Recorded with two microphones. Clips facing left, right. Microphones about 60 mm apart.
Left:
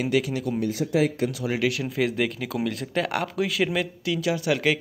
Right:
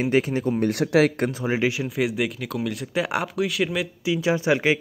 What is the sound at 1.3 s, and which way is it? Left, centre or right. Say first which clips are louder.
Speech: right 2 dB; right.